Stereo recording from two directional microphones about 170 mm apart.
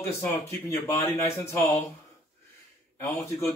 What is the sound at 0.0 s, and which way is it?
Speech, 15° left (ahead or behind).